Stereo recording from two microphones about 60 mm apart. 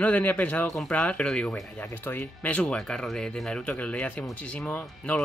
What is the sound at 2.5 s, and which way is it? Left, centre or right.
Speech, centre.